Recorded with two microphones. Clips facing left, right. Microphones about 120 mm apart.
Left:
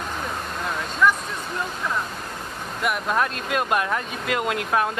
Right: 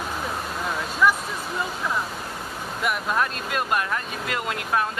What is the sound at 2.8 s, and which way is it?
Speech, centre (ahead or behind).